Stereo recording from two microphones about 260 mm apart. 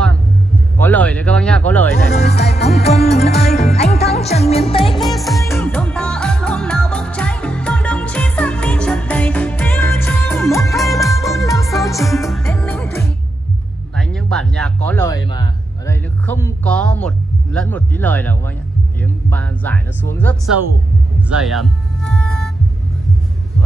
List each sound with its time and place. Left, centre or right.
0.7 s speech: centre
2.4 s music: left
4.9 s music: centre
10.8 s music: centre
11.4 s music: centre
12.0 s music: centre
13.9 s a sound: centre
18.9 s speech: centre
21.3 s music: centre